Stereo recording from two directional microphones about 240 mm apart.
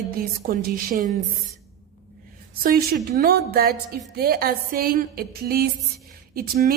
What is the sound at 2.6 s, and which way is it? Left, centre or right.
A woman's voice, right.